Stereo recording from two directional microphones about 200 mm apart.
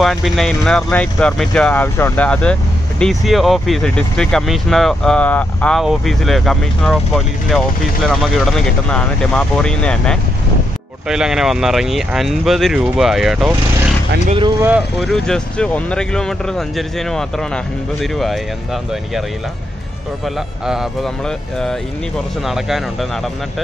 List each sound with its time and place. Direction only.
0.0 s speech: centre (ahead or behind)
14.6 s speech: 5° right (ahead or behind)
20.6 s speech: centre (ahead or behind)